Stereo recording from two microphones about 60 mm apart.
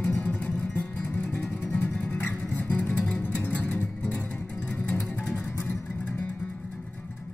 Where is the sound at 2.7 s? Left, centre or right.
Left.